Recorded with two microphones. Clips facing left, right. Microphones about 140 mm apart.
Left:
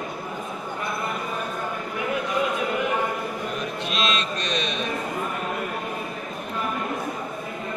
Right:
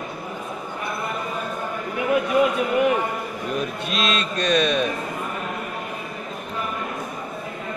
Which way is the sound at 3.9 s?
50° right (ahead or behind).